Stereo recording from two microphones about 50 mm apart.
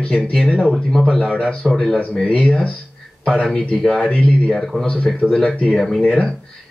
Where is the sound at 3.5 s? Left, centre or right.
Centre.